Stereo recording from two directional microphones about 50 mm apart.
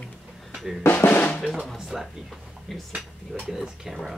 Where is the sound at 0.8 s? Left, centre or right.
Left.